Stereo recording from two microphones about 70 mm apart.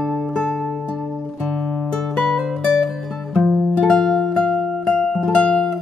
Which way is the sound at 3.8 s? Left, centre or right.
Centre.